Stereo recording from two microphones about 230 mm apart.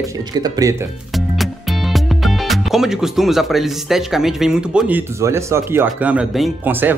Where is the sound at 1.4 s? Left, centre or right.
Centre.